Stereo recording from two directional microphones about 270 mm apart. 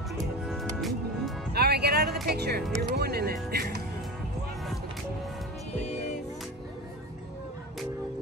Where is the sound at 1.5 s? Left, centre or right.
Right.